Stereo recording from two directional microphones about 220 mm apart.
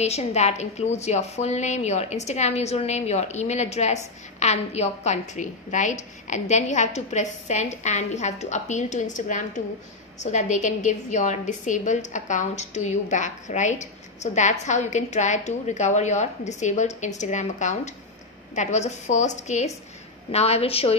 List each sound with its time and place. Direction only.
0.0 s a woman's voice: 30° left (ahead or behind)